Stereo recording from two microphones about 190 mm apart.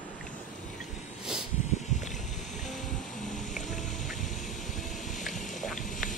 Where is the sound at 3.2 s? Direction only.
40° left (ahead or behind).